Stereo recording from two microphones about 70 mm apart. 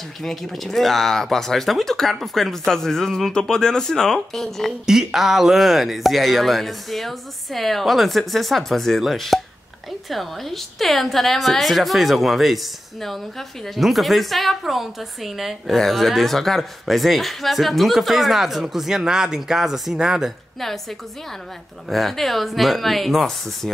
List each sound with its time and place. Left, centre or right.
0.2 s a woman's voice: centre
4.8 s a woman's voice: centre
13.7 s a woman's voice: centre
21.8 s a woman's voice: centre